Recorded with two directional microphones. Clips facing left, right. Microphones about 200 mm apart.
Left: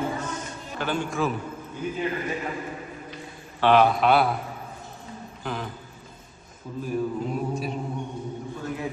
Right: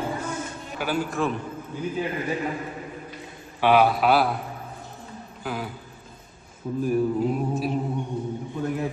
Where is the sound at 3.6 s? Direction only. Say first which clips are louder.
Even; 10° right (ahead or behind).